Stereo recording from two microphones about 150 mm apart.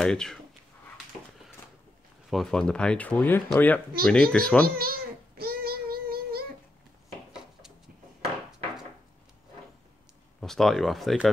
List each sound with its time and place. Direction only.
0.0 s speech: 5° left (ahead or behind)
2.2 s a child's voice: centre (ahead or behind)
4.6 s child singing: 85° right
10.4 s speech: centre (ahead or behind)